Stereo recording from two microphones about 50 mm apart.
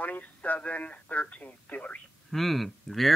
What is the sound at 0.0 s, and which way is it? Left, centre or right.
Speech, left.